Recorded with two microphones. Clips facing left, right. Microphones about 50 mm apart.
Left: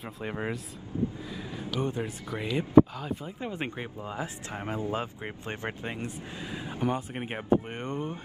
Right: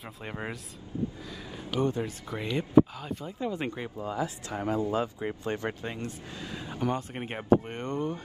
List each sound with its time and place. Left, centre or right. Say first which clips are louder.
0.2 s speech: left 4 dB; centre
1.8 s speech: right 3 dB; left
2.3 s speech: left 2 dB; centre
3.3 s speech: right 2 dB; left